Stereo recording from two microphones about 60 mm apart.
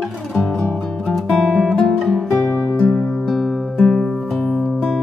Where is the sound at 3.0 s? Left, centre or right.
Centre.